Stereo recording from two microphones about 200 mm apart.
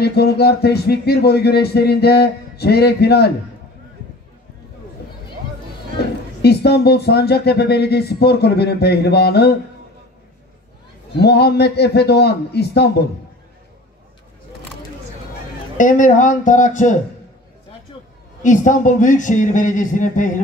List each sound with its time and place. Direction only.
0.0 s speech: 55° left (ahead or behind)
6.4 s speech: 55° left (ahead or behind)
11.1 s a man's voice: 55° left (ahead or behind)
15.8 s a man's voice: 40° left (ahead or behind)
18.4 s a man's voice: 40° left (ahead or behind)